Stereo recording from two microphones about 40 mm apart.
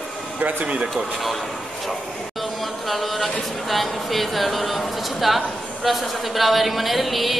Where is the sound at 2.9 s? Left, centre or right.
Centre.